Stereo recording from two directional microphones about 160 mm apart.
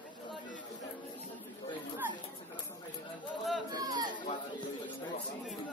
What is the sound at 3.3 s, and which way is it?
Chatter, centre (ahead or behind).